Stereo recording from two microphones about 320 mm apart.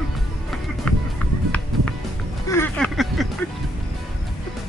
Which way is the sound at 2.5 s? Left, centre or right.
Centre.